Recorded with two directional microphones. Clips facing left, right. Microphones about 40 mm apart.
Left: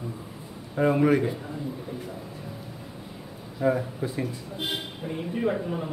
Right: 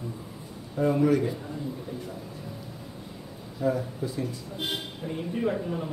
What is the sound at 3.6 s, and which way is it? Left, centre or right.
Speech, left.